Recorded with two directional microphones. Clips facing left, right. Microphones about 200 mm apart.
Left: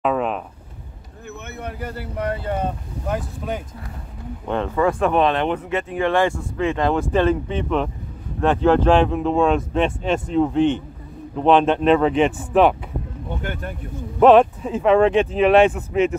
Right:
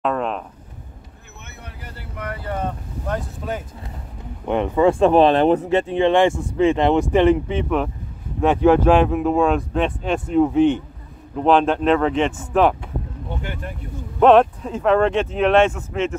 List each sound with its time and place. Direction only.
0.0 s a sound: 5° left (ahead or behind)
1.6 s vehicle: 50° left (ahead or behind)
2.1 s speech: 30° left (ahead or behind)
4.5 s speech: 15° right (ahead or behind); by 12.7 s 5° left (ahead or behind)
14.2 s speech: 5° left (ahead or behind)